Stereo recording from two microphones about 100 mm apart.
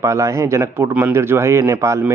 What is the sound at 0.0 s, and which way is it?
A man's voice, 30° right (ahead or behind).